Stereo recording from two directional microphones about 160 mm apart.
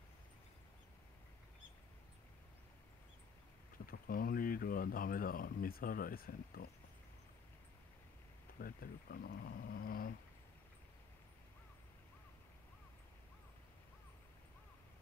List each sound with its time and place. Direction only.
3.7 s speech: 65° left (ahead or behind)
8.5 s speech: 65° left (ahead or behind)